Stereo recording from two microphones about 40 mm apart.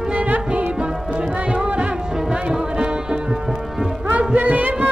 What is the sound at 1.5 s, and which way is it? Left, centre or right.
Music, right.